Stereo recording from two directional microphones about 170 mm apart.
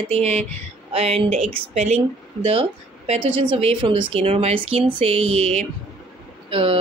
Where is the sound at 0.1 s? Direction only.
40° right (ahead or behind).